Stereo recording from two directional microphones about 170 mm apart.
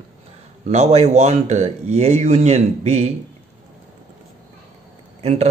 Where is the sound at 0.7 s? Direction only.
40° right (ahead or behind).